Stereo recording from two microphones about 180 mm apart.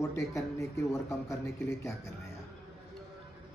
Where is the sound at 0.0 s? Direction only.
15° left (ahead or behind).